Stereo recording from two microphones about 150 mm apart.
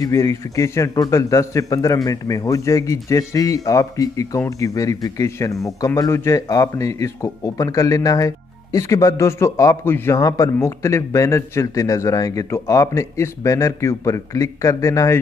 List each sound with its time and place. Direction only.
0.0 s a man's voice: 20° left (ahead or behind)